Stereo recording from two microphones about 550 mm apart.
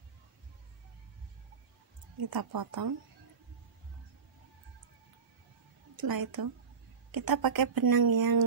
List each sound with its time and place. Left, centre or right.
2.2 s speech: right
5.9 s speech: right